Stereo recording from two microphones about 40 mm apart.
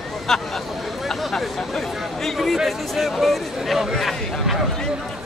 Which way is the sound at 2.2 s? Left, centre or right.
Centre.